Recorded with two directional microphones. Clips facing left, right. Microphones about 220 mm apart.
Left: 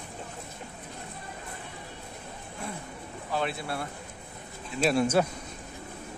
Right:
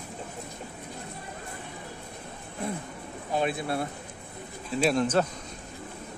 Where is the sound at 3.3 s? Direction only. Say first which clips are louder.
Right 4 dB; 15° right (ahead or behind).